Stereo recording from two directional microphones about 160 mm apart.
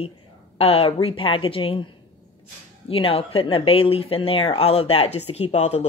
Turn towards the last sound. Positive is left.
turn(degrees=40)  # may be behind; listen again after turning